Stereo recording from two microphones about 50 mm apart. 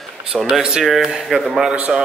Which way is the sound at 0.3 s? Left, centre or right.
Centre.